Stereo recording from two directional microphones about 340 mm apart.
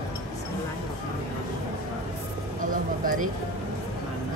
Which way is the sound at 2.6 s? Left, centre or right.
Right.